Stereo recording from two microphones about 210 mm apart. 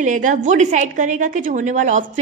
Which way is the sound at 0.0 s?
35° right (ahead or behind).